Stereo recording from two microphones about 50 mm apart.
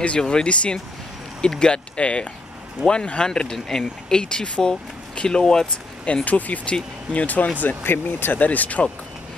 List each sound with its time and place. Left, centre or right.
0.0 s speech: centre
6.2 s speech: left
7.6 s speech: left